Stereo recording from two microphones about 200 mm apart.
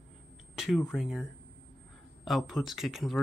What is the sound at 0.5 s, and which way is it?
Speech, centre (ahead or behind).